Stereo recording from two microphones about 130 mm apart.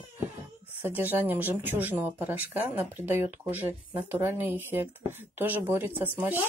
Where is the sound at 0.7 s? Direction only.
15° right (ahead or behind).